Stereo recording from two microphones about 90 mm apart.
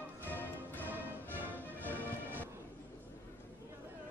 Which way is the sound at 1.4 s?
20° right (ahead or behind).